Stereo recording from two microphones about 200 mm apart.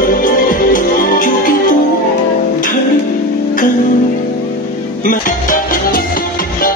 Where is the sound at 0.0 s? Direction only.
45° left (ahead or behind).